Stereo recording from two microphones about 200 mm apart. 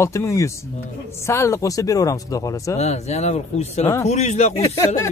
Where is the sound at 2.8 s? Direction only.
35° left (ahead or behind).